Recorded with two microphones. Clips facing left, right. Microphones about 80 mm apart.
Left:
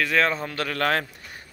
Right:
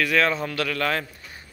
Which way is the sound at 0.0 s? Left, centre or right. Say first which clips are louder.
Right 1 dB; left.